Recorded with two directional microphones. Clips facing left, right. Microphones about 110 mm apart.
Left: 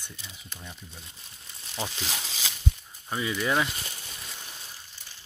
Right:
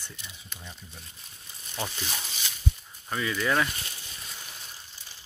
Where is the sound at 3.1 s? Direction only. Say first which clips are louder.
Even; 20° left (ahead or behind).